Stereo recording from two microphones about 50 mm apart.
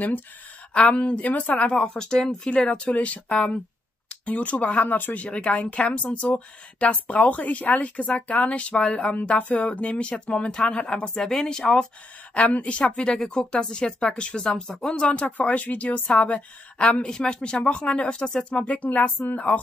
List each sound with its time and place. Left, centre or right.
0.7 s speech: left
1.6 s speech: left
2.0 s speech: centre
11.2 s speech: centre
12.4 s speech: left
14.7 s speech: centre
15.0 s speech: left